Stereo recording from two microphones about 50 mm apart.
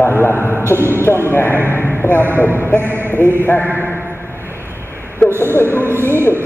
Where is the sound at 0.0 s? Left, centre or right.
Left.